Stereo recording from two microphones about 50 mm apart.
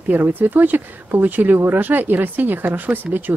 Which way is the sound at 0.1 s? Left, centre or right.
Right.